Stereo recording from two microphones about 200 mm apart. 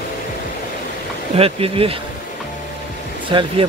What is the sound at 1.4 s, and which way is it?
Speech, 30° right (ahead or behind).